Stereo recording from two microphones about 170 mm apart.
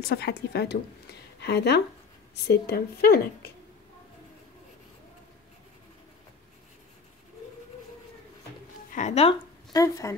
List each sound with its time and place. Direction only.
0.1 s a woman's voice: 70° left (ahead or behind)
8.9 s a woman's voice: 40° left (ahead or behind)
9.7 s a woman's voice: 20° left (ahead or behind)